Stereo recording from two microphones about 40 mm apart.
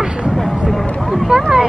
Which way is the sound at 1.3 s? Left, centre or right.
Centre.